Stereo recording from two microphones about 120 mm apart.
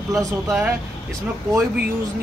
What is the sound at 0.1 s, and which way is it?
Speech, centre (ahead or behind).